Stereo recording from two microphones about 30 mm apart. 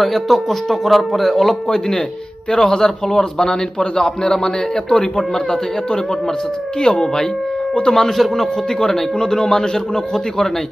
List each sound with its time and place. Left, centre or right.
0.0 s a man's voice: centre; by 4.9 s left
6.8 s speech: left
7.8 s a man's voice: centre
9.2 s a man's voice: left